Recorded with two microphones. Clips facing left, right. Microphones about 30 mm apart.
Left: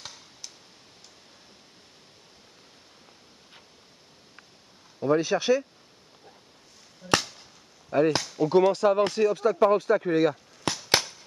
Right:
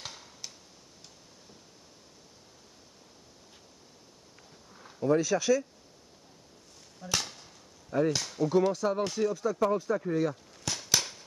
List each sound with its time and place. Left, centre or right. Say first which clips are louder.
5.0 s speech: left 2 dB; left
7.0 s chop: left 9 dB; left
7.9 s speech: left 5 dB; left
8.7 s speech: left 7 dB; left
10.7 s a sound: left 6 dB; left